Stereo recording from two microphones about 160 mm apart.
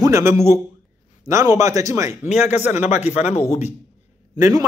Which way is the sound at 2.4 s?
45° left (ahead or behind).